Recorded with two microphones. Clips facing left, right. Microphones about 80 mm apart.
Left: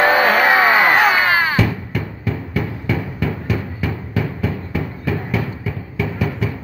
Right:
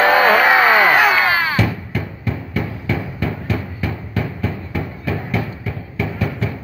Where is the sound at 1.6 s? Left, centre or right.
Centre.